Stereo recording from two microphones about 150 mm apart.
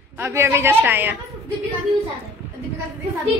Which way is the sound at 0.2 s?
15° right (ahead or behind).